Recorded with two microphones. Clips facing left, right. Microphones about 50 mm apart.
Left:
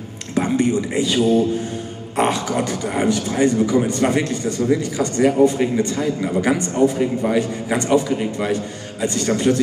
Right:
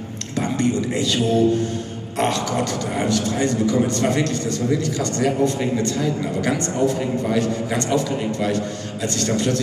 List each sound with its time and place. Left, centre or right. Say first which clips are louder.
0.3 s speech: left 3 dB; centre